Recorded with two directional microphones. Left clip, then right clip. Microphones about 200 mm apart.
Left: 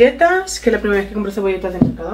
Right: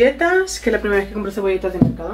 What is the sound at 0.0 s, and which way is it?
Speech, 10° left (ahead or behind).